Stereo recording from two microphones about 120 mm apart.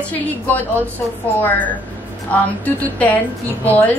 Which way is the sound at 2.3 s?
15° left (ahead or behind).